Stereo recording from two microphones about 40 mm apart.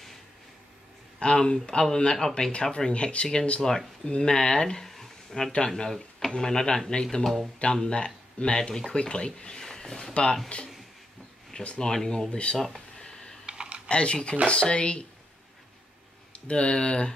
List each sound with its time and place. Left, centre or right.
1.2 s speech: left
3.6 s speech: centre
4.8 s a sound: centre
5.7 s speech: centre
10.5 s speech: left
11.8 s speech: centre
12.3 s speech: left
12.5 s speech: centre
13.5 s typing: right
13.8 s speech: left
16.4 s speech: left